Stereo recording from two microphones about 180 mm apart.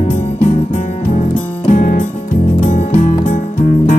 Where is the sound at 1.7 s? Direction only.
50° left (ahead or behind).